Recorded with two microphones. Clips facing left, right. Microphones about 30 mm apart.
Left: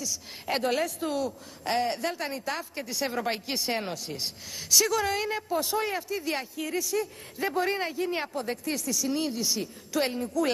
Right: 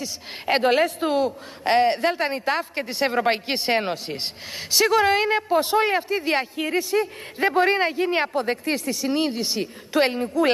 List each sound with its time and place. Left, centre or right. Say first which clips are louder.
0.0 s a man's voice: right 5 dB; right